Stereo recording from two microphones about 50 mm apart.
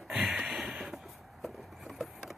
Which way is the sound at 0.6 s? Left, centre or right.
Centre.